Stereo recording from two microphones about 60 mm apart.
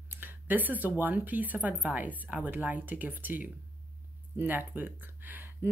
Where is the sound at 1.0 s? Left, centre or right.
Right.